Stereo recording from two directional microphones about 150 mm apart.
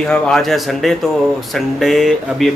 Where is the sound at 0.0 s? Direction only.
5° left (ahead or behind).